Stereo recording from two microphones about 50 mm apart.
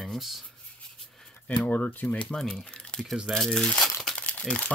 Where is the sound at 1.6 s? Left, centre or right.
Left.